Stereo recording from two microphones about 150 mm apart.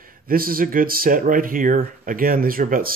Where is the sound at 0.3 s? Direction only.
75° right (ahead or behind).